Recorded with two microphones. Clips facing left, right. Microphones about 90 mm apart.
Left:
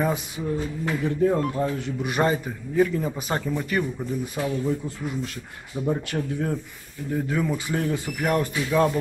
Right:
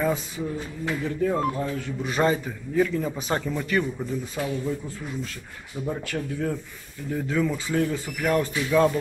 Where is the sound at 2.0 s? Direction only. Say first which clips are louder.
Even; 15° left (ahead or behind).